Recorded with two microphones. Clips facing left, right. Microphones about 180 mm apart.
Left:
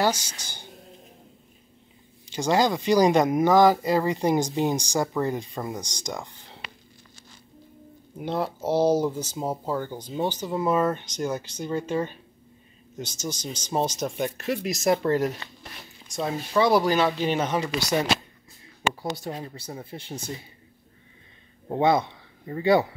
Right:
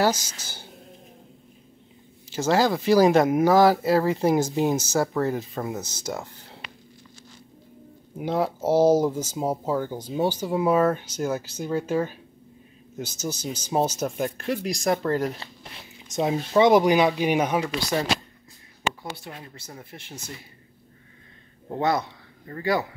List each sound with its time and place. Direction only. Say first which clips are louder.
0.0 s speech: right 2 dB; 10° right (ahead or behind)
2.2 s speech: right 1 dB; 5° right (ahead or behind)
8.2 s speech: right 3 dB; 10° right (ahead or behind)
16.1 s speech: right 4 dB; 20° right (ahead or behind)
19.1 s speech: left 7 dB; 40° left (ahead or behind)
21.6 s speech: left 3 dB; 20° left (ahead or behind)